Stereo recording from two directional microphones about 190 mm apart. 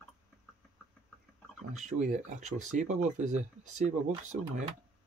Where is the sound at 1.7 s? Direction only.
40° right (ahead or behind).